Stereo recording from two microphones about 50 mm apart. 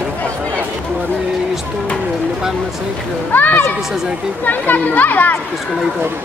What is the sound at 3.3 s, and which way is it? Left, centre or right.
Speech, left.